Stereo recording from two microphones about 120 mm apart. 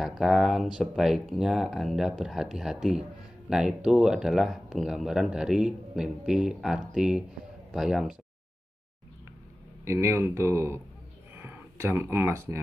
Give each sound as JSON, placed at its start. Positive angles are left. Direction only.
{"t": 0.0, "sound": "speech", "side_deg": -5}
{"t": 9.8, "sound": "speech", "side_deg": -20}